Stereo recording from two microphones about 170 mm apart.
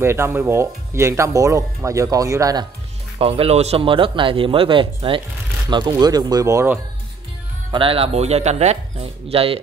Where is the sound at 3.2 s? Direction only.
35° right (ahead or behind); by 6.8 s 15° right (ahead or behind).